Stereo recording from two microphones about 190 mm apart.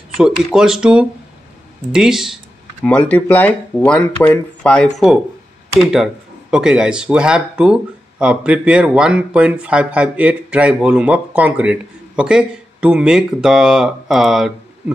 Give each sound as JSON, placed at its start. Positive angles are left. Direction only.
{"t": 0.2, "sound": "speech", "side_deg": -5}